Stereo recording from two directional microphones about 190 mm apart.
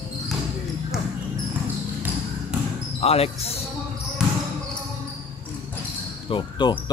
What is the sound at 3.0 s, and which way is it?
Speech, 30° left (ahead or behind).